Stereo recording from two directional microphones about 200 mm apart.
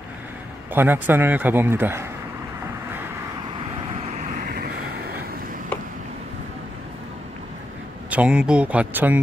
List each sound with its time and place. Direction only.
0.7 s a man's voice: 10° right (ahead or behind)
8.1 s a man's voice: 5° right (ahead or behind)